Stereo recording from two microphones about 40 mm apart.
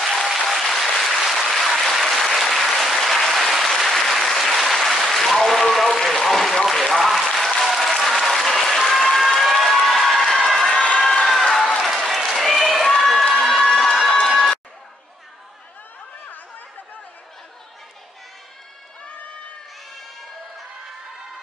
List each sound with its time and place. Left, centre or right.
0.0 s applause: centre
9.7 s crowd: centre
10.7 s run: left
11.1 s a sound: centre
13.3 s run: centre